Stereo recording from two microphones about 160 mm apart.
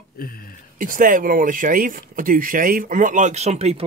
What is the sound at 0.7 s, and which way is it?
Speech, 60° right (ahead or behind).